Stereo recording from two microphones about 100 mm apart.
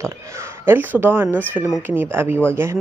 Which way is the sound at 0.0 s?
30° right (ahead or behind).